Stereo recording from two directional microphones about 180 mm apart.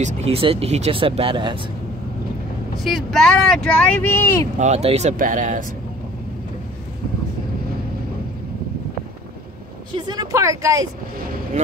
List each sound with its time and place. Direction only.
0.0 s speech: 35° right (ahead or behind)
2.8 s speech: centre (ahead or behind)
4.6 s speech: 40° right (ahead or behind)
5.1 s speech: 50° right (ahead or behind)
9.9 s a woman's voice: 20° right (ahead or behind)